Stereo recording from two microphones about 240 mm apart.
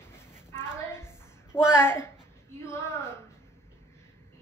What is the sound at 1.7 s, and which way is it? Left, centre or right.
Speech, centre.